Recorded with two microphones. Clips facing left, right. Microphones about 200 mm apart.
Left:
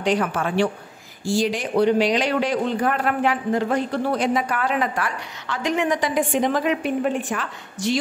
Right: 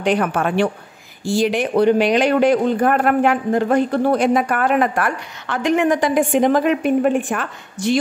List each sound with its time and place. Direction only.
0.0 s a woman's voice: 55° right (ahead or behind)